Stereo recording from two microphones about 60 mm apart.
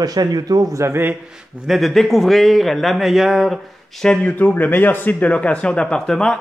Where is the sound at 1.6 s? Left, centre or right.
Centre.